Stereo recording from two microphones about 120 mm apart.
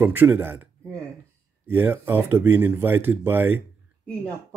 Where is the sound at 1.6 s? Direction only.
15° right (ahead or behind).